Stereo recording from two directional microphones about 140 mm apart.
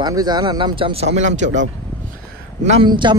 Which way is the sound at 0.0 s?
30° right (ahead or behind).